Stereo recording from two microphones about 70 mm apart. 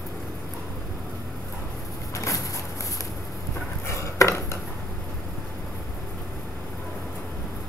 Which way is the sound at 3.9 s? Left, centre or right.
Left.